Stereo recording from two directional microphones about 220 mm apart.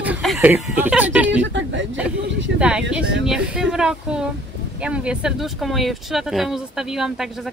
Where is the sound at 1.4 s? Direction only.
55° right (ahead or behind).